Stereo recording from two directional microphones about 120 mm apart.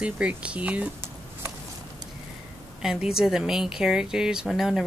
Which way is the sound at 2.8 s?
5° right (ahead or behind).